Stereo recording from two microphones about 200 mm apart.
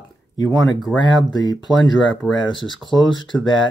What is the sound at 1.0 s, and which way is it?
Speech, 20° left (ahead or behind).